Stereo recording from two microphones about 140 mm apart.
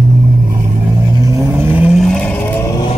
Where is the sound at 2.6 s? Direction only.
25° left (ahead or behind).